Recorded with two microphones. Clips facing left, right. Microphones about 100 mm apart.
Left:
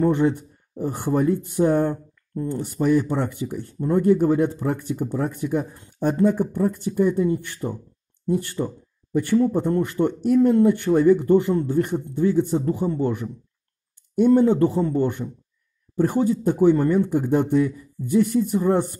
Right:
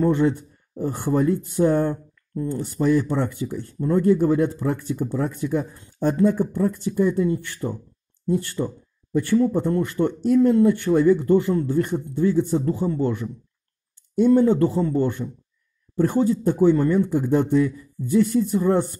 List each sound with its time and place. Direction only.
0.0 s speech: 20° left (ahead or behind)